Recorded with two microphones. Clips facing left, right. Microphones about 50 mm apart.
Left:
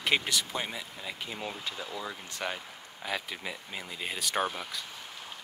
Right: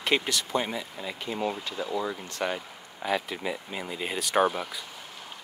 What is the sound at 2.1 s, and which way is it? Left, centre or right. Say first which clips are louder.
Speech: right 5 dB; centre.